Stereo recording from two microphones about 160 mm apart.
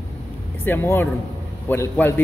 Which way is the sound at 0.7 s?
15° left (ahead or behind).